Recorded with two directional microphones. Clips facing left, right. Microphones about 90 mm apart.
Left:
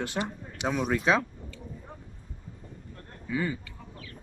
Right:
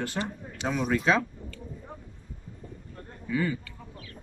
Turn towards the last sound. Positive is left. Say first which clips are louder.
# right 2 dB
turn(degrees=15)  # may be behind; listen again after turning